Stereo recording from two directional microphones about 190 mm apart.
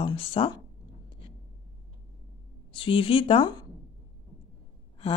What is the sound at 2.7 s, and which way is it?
Speech, 30° left (ahead or behind).